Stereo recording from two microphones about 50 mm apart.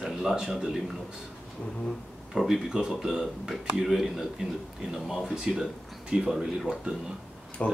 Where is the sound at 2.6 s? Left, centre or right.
Centre.